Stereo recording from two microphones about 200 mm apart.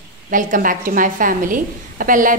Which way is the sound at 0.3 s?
40° right (ahead or behind).